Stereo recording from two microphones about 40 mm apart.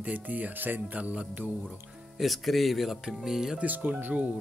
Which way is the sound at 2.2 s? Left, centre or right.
Centre.